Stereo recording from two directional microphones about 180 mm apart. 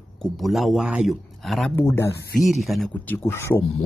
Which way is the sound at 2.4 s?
Centre (ahead or behind).